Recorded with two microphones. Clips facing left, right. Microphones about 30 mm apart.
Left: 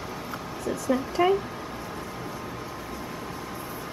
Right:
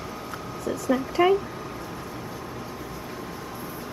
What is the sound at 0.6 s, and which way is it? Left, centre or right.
Speech, centre.